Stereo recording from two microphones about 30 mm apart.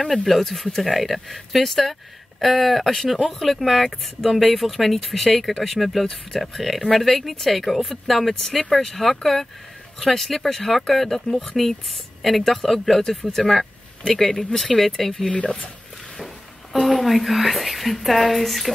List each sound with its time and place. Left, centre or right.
0.4 s speech: centre
12.2 s speech: centre
15.3 s speech: left
17.0 s speech: centre